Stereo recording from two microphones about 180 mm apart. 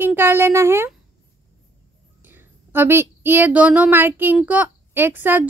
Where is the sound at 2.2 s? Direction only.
10° right (ahead or behind).